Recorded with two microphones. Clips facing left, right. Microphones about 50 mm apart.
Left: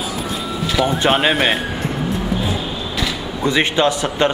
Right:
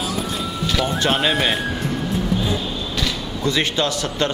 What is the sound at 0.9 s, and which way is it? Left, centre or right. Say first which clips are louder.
Speech: left 3 dB; left.